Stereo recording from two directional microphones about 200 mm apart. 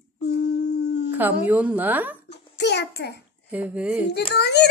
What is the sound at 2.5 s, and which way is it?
Speech, 60° left (ahead or behind).